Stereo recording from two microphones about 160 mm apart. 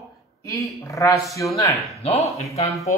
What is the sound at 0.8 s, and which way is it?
Speech, 20° left (ahead or behind).